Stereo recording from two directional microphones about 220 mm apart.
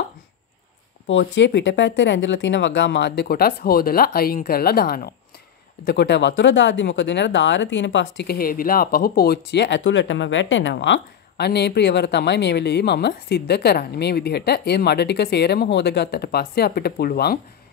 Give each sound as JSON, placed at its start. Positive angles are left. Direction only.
{"t": 1.0, "sound": "speech", "side_deg": 55}